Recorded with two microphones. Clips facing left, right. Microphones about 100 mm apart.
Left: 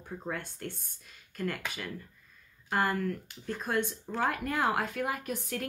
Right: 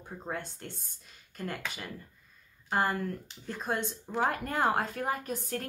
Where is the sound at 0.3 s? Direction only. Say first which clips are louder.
Even; 30° right (ahead or behind).